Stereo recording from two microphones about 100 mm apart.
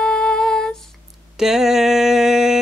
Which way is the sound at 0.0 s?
5° left (ahead or behind).